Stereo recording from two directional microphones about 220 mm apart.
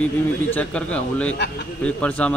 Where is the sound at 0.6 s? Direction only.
5° left (ahead or behind).